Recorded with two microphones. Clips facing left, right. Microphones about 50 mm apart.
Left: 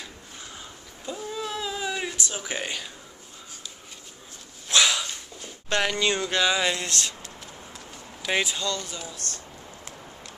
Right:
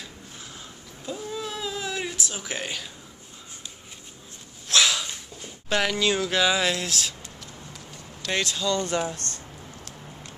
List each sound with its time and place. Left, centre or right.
1.0 s cat: centre
4.6 s a sound: centre
5.7 s speech: centre
8.2 s speech: centre
8.8 s speech: right